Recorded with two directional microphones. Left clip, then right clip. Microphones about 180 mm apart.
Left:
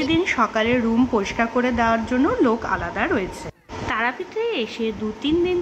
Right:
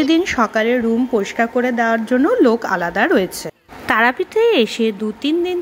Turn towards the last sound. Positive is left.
turn(degrees=-35)  # may be behind; listen again after turning